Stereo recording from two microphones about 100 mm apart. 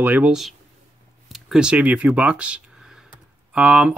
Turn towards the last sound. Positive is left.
turn(degrees=-10)  # may be behind; listen again after turning